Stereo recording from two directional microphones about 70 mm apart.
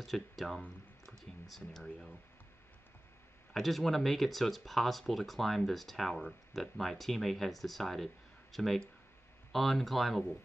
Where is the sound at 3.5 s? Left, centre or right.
Centre.